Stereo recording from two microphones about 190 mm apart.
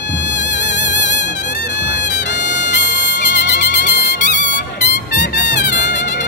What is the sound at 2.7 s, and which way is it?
Music, 65° left (ahead or behind).